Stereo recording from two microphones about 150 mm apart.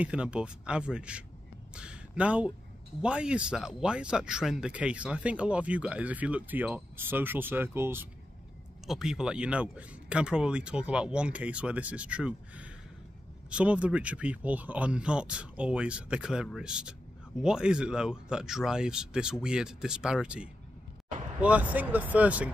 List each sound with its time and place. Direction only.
0.0 s speech: 10° right (ahead or behind)
1.7 s a sound: 5° right (ahead or behind)
3.0 s speech: 5° right (ahead or behind)
8.8 s speech: 5° right (ahead or behind)